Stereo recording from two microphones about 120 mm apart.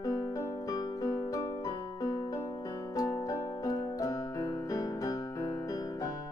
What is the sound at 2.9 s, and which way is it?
Piano, 30° left (ahead or behind).